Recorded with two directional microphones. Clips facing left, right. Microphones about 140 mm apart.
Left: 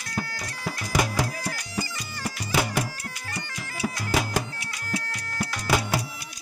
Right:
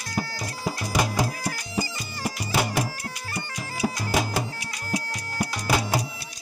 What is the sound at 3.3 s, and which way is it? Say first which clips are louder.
Bagpipes: right 3 dB; 20° right (ahead or behind).